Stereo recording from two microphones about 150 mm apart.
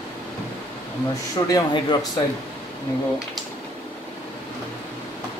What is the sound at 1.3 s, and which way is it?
Speech, 25° left (ahead or behind).